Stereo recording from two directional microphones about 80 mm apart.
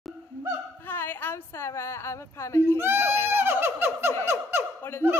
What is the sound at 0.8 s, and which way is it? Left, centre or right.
A woman's voice, left.